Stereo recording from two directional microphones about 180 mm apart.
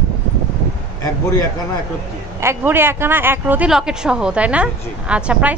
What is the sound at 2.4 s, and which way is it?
Speech, 15° right (ahead or behind).